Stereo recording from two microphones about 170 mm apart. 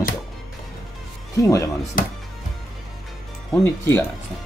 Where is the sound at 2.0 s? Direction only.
55° left (ahead or behind).